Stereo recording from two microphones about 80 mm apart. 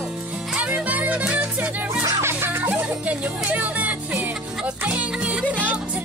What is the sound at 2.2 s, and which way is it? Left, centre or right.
Music, right.